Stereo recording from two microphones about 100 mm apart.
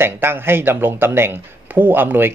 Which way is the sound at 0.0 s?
25° right (ahead or behind).